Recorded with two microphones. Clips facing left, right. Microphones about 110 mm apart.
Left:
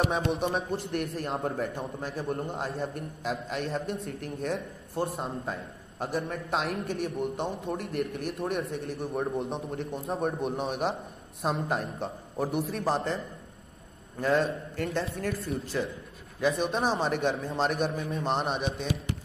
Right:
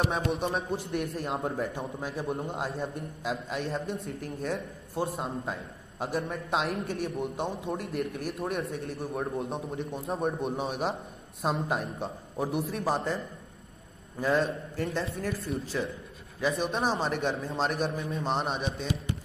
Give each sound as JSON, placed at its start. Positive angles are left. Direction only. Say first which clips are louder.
{"t": 0.3, "sound": "a man's voice", "louder": "left 1 dB", "side_deg": 0}
{"t": 14.2, "sound": "a man's voice", "louder": "left 1 dB", "side_deg": -5}